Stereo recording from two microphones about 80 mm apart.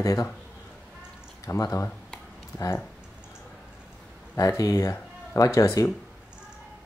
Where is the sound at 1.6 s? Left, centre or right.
Left.